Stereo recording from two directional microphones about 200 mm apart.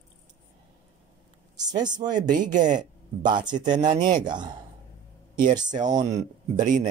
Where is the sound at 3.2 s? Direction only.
20° right (ahead or behind).